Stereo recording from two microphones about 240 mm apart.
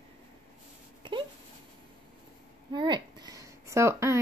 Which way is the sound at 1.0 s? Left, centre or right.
Right.